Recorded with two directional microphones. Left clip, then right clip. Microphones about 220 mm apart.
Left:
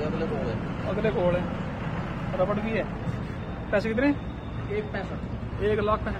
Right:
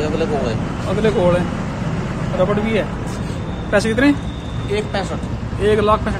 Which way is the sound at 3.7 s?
5° right (ahead or behind).